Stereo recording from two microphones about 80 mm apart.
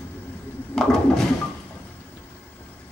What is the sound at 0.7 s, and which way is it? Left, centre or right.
Toilet flush, centre.